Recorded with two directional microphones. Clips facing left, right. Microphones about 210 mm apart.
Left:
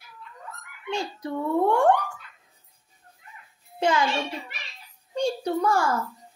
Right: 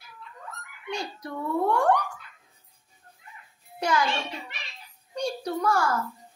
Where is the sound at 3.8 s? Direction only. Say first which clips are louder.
Left 3 dB; 25° left (ahead or behind).